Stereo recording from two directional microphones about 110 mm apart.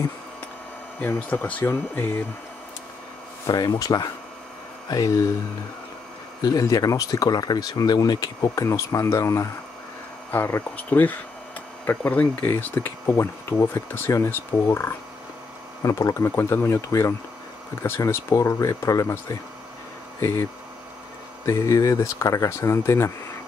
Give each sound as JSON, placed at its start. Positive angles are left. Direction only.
{"t": 1.0, "sound": "speech", "side_deg": 15}
{"t": 3.4, "sound": "speech", "side_deg": 35}
{"t": 6.4, "sound": "speech", "side_deg": 30}
{"t": 20.2, "sound": "speech", "side_deg": 25}
{"t": 21.5, "sound": "speech", "side_deg": 30}